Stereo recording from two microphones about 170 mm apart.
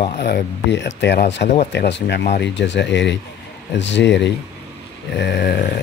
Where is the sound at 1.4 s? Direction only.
40° left (ahead or behind).